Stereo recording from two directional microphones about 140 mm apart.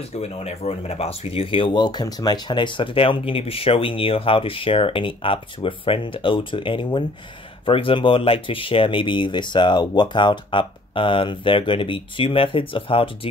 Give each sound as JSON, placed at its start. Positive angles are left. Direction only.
{"t": 0.1, "sound": "speech", "side_deg": 50}